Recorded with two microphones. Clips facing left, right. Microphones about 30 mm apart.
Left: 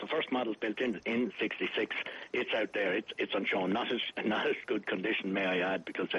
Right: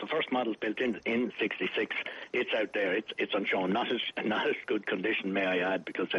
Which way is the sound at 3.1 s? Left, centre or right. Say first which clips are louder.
Right 2 dB; right.